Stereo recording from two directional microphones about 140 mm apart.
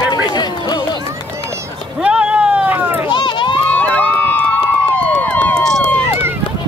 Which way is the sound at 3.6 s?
10° left (ahead or behind).